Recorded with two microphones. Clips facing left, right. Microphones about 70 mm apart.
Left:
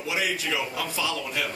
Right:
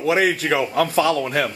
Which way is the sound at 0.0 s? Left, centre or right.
Right.